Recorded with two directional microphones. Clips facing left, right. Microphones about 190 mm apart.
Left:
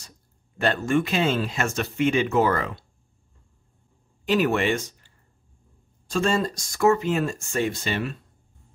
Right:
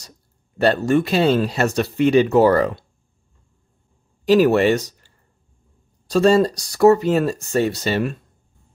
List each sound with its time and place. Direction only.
0.6 s speech: 35° right (ahead or behind)
4.3 s speech: 40° right (ahead or behind)